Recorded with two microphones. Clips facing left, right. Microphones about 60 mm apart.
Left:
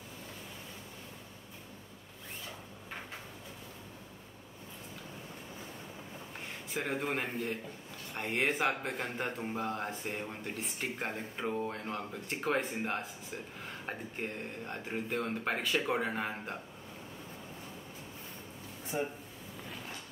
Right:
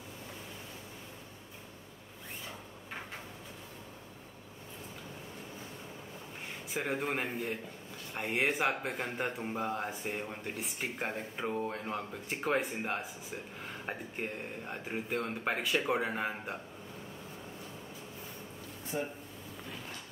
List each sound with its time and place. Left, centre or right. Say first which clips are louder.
6.7 s speech: even; centre
18.9 s speech: left 1 dB; centre